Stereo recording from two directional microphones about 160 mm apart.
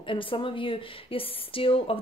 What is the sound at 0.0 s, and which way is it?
Speech, 35° left (ahead or behind).